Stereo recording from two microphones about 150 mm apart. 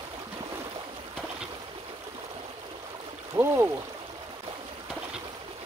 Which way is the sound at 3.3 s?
15° right (ahead or behind).